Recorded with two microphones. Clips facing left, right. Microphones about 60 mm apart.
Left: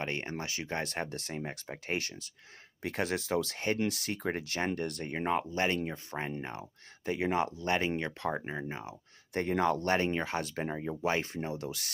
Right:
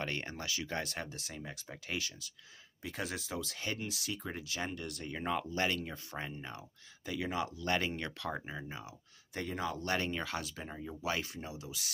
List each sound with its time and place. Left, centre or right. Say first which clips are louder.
0.0 s speech: left 3 dB; left
2.8 s speech: left 7 dB; left
3.5 s speech: left 7 dB; left
3.8 s speech: left 8 dB; left
7.6 s speech: left 4 dB; left
9.8 s speech: left 6 dB; left
10.4 s speech: left 8 dB; left